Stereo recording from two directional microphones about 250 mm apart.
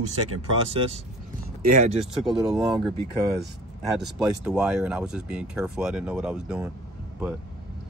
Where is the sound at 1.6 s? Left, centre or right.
Right.